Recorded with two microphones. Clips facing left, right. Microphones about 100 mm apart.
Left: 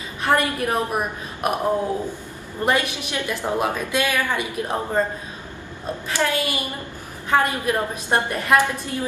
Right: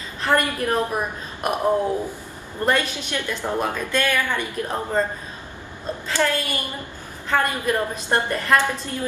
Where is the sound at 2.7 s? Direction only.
15° left (ahead or behind).